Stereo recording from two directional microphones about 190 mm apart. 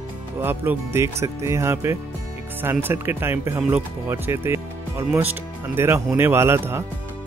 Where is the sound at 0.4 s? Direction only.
10° right (ahead or behind).